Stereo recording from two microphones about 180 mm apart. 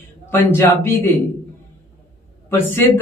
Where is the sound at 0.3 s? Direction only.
15° left (ahead or behind).